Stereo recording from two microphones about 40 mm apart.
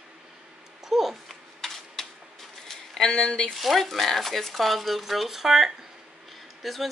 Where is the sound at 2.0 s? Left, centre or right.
Centre.